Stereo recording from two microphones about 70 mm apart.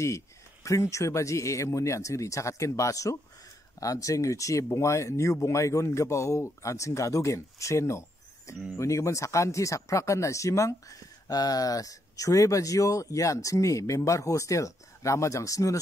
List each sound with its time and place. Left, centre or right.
0.7 s speech: left